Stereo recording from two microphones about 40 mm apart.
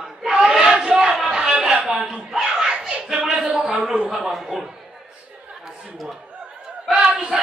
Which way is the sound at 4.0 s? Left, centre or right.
Centre.